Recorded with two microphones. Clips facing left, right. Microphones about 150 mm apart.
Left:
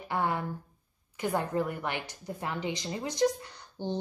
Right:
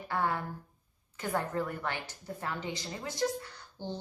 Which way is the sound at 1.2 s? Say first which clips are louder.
Left 3 dB; 15° left (ahead or behind).